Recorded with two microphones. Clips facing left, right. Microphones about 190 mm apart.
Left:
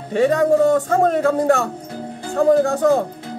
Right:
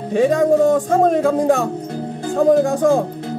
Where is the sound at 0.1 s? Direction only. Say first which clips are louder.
Right 1 dB; 15° right (ahead or behind).